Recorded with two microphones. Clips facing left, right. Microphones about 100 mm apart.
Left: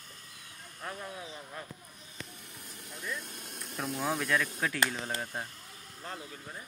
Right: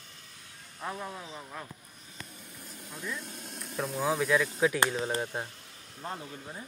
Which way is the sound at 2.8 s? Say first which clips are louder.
Right 1 dB; 55° left (ahead or behind).